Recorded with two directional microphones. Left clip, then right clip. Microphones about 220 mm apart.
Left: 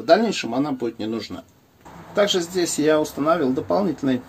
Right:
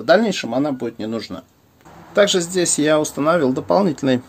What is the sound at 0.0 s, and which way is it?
Speech, 45° right (ahead or behind).